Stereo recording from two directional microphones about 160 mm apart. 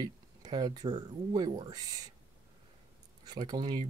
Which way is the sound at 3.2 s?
25° right (ahead or behind).